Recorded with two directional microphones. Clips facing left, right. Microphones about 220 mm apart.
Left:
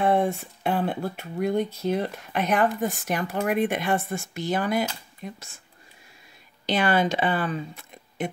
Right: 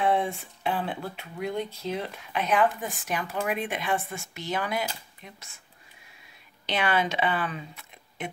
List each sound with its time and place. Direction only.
0.0 s speech: 45° left (ahead or behind)
3.9 s speech: 40° left (ahead or behind)
6.6 s speech: 45° left (ahead or behind)